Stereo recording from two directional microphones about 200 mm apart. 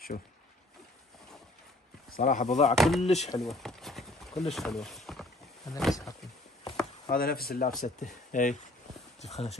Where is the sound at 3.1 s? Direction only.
35° left (ahead or behind).